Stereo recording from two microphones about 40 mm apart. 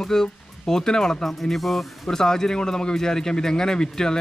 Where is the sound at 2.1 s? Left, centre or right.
Centre.